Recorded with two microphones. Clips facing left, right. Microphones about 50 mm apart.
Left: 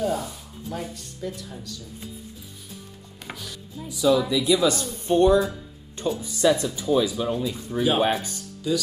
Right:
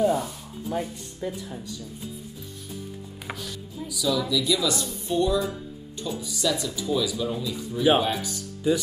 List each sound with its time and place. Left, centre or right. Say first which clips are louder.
0.0 s speech: right 3 dB; centre
3.3 s music: right 1 dB; centre
3.8 s speech: left 6 dB; left
8.1 s speech: left 3 dB; left
8.6 s speech: right 2 dB; right